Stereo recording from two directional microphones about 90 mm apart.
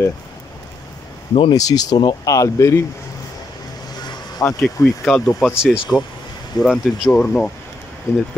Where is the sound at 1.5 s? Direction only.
45° left (ahead or behind).